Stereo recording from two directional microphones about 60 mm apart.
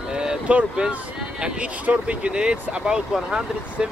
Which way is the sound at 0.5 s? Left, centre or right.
Centre.